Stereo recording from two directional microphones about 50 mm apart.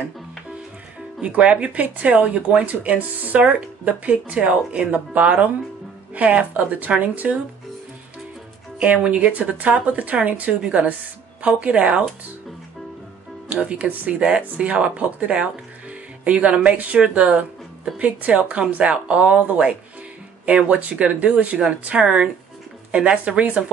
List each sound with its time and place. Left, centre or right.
1.2 s speech: right
9.1 s speech: right
13.5 s speech: right